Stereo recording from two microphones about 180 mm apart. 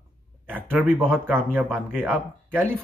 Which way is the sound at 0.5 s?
10° right (ahead or behind).